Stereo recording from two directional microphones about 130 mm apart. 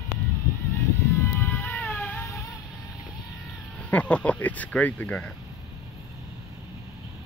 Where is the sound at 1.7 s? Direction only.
10° left (ahead or behind).